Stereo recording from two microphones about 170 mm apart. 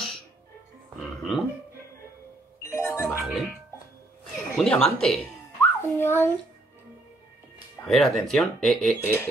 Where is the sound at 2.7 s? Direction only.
15° left (ahead or behind).